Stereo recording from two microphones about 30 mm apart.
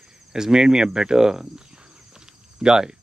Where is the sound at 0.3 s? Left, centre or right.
Right.